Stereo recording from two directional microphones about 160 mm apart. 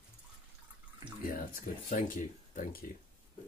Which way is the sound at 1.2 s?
60° left (ahead or behind).